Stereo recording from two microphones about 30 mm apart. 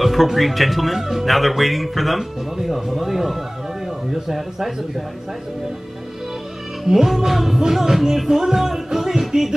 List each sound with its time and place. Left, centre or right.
0.0 s speech: centre
6.8 s speech: centre
7.8 s music: centre